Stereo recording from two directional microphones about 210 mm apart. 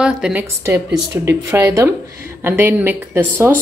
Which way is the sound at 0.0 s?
5° right (ahead or behind).